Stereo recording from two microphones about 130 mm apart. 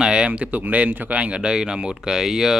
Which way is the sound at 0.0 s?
5° right (ahead or behind).